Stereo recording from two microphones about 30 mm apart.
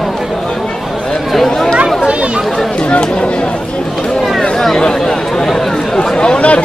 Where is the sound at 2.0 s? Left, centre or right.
Right.